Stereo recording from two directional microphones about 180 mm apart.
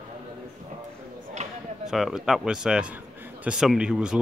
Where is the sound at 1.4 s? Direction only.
40° right (ahead or behind).